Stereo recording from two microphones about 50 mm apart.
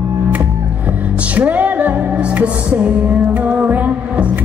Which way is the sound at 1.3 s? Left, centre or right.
Right.